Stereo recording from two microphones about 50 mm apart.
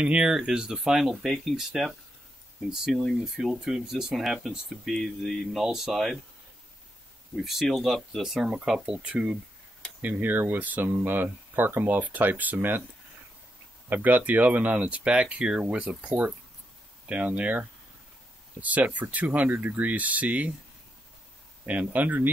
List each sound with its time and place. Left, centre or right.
0.0 s speech: right; by 6.1 s centre
7.4 s speech: centre
10.0 s speech: right
13.8 s speech: right
21.6 s speech: right